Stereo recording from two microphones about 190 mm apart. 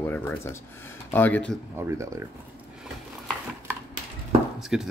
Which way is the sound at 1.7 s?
15° right (ahead or behind).